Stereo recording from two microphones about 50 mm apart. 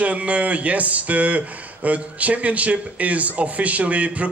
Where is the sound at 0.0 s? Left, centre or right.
Right.